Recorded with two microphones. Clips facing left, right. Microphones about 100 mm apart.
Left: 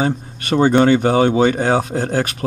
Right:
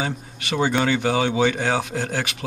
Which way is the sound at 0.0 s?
45° left (ahead or behind).